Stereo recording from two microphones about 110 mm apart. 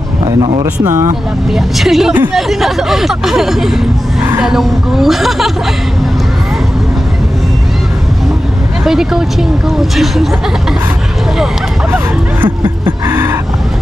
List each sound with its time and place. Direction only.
0.2 s speech: 45° right (ahead or behind)
1.5 s speech: centre (ahead or behind)
8.8 s speech: 5° right (ahead or behind)
11.9 s music: 20° right (ahead or behind)